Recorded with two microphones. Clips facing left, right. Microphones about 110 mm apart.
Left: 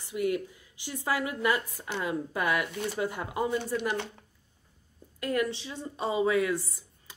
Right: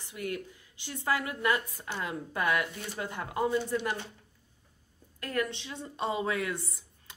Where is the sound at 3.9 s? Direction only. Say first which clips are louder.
Left 7 dB; 85° left.